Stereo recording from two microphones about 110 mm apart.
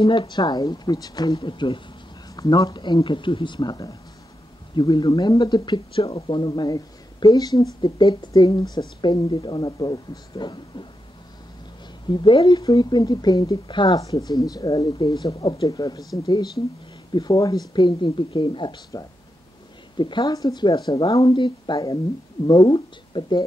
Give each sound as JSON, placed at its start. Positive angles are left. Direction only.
{"t": 0.0, "sound": "speech", "side_deg": 45}
{"t": 2.3, "sound": "speech", "side_deg": 35}
{"t": 8.7, "sound": "speech", "side_deg": 45}
{"t": 12.1, "sound": "speech", "side_deg": 50}
{"t": 17.1, "sound": "speech", "side_deg": 35}
{"t": 20.0, "sound": "speech", "side_deg": 45}
{"t": 21.3, "sound": "speech", "side_deg": 45}